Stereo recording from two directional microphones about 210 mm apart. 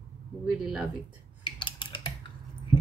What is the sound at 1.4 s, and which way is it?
Typing, 25° left (ahead or behind).